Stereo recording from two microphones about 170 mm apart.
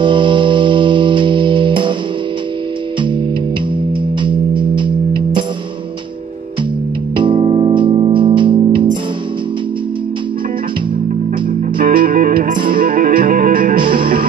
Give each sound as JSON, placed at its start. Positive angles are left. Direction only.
{"t": 0.0, "sound": "music", "side_deg": -30}
{"t": 4.2, "sound": "music", "side_deg": -30}
{"t": 7.2, "sound": "music", "side_deg": -30}
{"t": 11.8, "sound": "music", "side_deg": -55}
{"t": 13.7, "sound": "music", "side_deg": -30}